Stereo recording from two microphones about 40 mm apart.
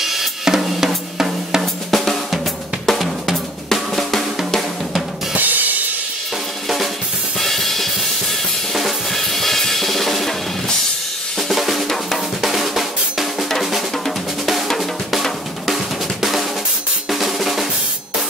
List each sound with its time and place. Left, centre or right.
0.0 s drum kit: centre
2.9 s drum: centre
5.3 s music: right
7.3 s music: centre
8.7 s drum kit: centre
11.3 s drum kit: centre
12.4 s drum: centre
15.7 s drum: centre